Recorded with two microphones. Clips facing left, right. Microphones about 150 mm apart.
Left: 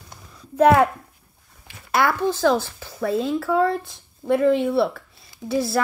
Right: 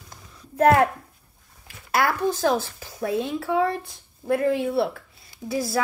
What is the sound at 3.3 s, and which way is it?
Speech, 65° left (ahead or behind).